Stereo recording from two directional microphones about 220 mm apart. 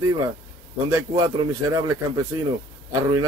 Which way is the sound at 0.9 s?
15° right (ahead or behind).